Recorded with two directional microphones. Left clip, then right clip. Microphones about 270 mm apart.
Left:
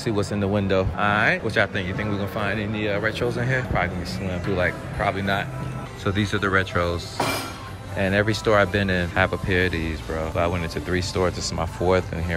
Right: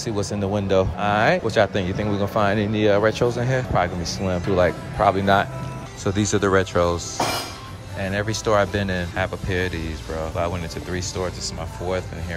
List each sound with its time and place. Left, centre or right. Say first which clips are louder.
0.0 s speech: left 1 dB; centre
8.0 s speech: left 3 dB; centre